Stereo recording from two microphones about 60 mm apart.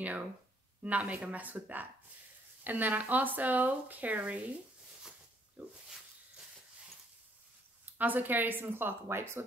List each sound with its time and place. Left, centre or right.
0.8 s speech: right
5.6 s speech: right
7.8 s speech: right